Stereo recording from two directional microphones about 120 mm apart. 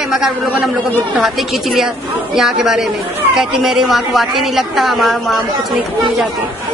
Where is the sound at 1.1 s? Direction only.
Centre (ahead or behind).